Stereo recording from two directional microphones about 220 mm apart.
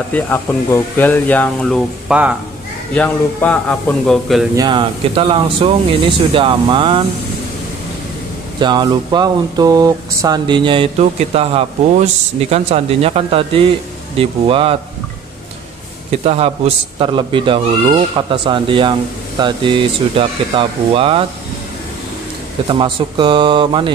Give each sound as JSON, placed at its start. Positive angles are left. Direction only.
{"t": 0.1, "sound": "speech", "side_deg": 10}
{"t": 2.9, "sound": "a man's voice", "side_deg": 5}
{"t": 4.6, "sound": "a man's voice", "side_deg": -20}
{"t": 8.5, "sound": "a man's voice", "side_deg": -20}
{"t": 16.1, "sound": "a man's voice", "side_deg": -25}
{"t": 22.7, "sound": "a man's voice", "side_deg": -20}